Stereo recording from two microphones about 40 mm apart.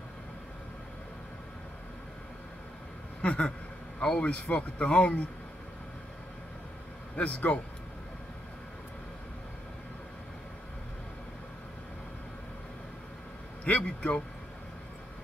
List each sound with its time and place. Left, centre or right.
3.2 s speech: left
7.2 s speech: left
13.7 s speech: left